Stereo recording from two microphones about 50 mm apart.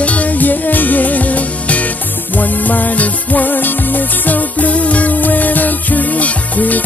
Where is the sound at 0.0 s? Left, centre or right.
Left.